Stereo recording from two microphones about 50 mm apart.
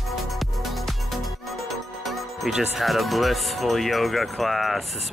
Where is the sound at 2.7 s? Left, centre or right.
Centre.